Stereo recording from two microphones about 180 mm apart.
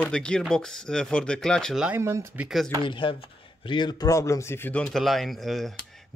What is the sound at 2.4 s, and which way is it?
Speech, centre (ahead or behind).